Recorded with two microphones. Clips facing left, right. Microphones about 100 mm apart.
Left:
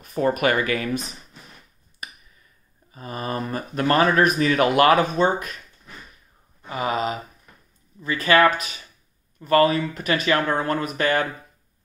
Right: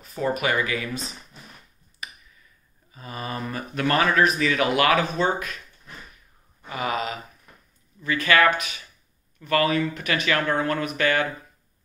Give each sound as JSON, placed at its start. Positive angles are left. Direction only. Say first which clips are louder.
{"t": 0.0, "sound": "speech", "louder": "left 4 dB", "side_deg": 50}
{"t": 2.0, "sound": "a sound", "louder": "even", "side_deg": 45}
{"t": 2.9, "sound": "speech", "louder": "left 4 dB", "side_deg": 40}
{"t": 4.2, "sound": "speech", "louder": "left 3 dB", "side_deg": 45}
{"t": 6.6, "sound": "speech", "louder": "left 3 dB", "side_deg": 30}